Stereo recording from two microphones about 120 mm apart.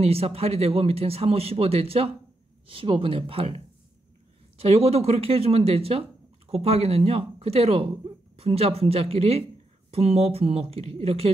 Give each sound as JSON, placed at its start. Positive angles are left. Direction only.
{"t": 0.0, "sound": "speech", "side_deg": -55}